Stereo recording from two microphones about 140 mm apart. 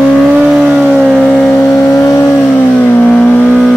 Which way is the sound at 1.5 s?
20° left (ahead or behind).